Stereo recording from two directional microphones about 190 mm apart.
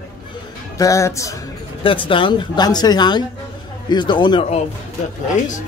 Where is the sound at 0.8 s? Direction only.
15° left (ahead or behind).